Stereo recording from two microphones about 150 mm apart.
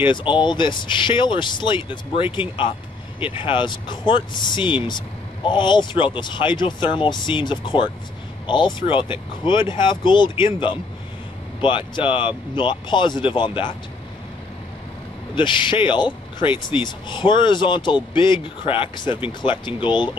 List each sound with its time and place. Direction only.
0.0 s speech: 35° left (ahead or behind)
15.3 s speech: 30° left (ahead or behind)